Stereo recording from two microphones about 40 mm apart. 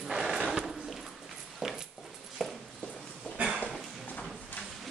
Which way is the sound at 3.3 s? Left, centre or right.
Right.